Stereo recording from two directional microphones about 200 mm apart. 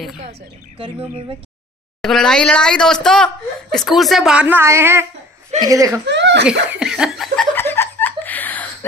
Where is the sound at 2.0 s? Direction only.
Centre (ahead or behind); by 5.9 s 15° right (ahead or behind).